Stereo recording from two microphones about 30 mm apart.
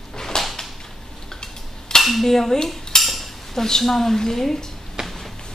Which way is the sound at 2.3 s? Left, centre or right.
Centre.